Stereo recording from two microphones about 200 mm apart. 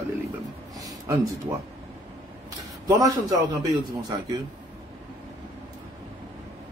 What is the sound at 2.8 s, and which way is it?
A man's voice, 15° right (ahead or behind).